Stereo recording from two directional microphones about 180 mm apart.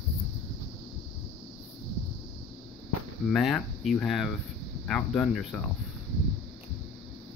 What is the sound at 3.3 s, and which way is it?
Speech, centre (ahead or behind).